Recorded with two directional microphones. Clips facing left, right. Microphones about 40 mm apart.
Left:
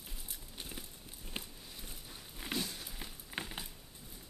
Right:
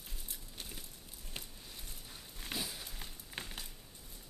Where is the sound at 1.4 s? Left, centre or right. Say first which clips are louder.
Left 4 dB; left.